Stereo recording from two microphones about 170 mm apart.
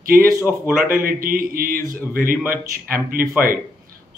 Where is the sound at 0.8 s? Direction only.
55° right (ahead or behind).